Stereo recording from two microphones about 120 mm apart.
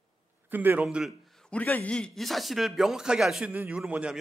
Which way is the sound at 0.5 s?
15° right (ahead or behind).